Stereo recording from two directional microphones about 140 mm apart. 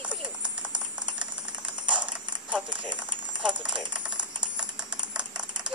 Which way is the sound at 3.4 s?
5° right (ahead or behind).